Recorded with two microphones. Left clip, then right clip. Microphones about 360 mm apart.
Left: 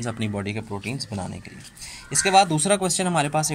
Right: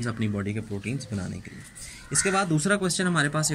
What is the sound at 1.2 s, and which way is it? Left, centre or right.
Speech, left.